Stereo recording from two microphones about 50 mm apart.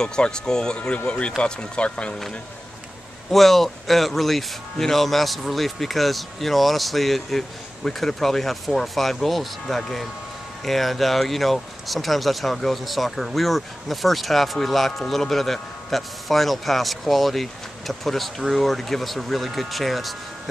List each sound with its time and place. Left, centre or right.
0.0 s speech: centre
3.3 s speech: centre